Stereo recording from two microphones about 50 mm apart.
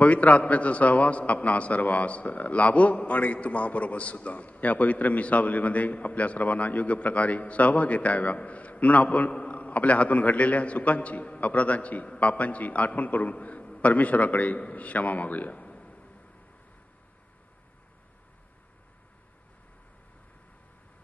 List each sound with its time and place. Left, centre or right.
0.0 s a man's voice: left